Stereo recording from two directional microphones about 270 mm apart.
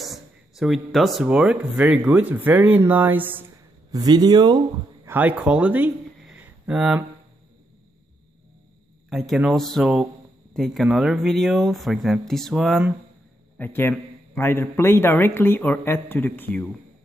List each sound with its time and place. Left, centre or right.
0.0 s speech: centre
6.3 s a sound: centre
9.1 s a man's voice: centre